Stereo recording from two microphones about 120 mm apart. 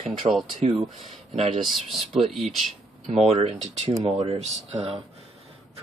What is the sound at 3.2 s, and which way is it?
Speech, 60° right (ahead or behind).